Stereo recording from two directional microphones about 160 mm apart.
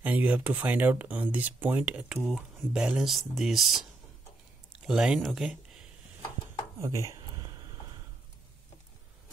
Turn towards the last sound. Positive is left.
turn(degrees=-20)  # may be behind; listen again after turning